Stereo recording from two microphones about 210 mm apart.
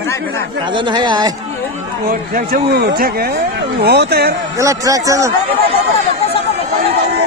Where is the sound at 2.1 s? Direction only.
45° right (ahead or behind).